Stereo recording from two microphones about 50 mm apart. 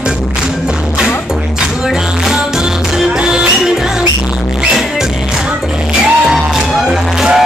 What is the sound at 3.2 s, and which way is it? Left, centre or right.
Music, centre.